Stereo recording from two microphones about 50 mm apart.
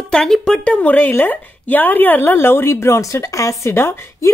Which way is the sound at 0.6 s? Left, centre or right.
Left.